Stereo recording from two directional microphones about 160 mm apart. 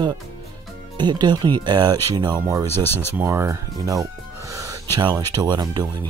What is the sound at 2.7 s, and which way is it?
Speech, 15° left (ahead or behind).